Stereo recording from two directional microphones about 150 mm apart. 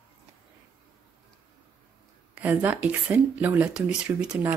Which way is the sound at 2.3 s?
10° right (ahead or behind).